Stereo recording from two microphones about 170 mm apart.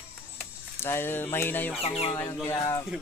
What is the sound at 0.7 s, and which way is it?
Speech, 15° left (ahead or behind).